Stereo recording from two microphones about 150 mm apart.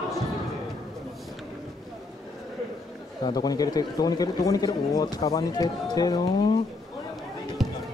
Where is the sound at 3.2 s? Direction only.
25° left (ahead or behind).